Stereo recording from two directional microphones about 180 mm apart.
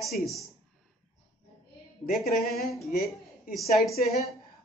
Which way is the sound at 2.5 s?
Centre (ahead or behind).